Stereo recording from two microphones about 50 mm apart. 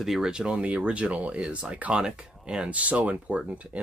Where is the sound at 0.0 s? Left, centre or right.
Centre.